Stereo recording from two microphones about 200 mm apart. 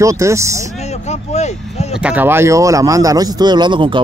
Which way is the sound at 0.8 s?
35° left (ahead or behind).